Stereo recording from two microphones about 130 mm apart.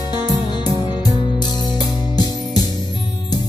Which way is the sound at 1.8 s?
30° left (ahead or behind).